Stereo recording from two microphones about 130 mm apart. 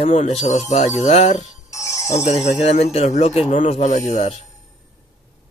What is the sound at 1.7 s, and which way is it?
Jingle bell, 25° left (ahead or behind).